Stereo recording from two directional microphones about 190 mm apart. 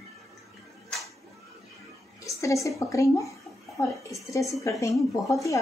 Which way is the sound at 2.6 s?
15° left (ahead or behind).